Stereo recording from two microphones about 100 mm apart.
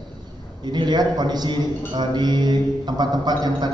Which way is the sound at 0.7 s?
45° right (ahead or behind).